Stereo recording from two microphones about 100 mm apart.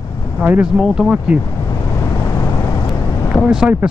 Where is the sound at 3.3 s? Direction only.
5° right (ahead or behind).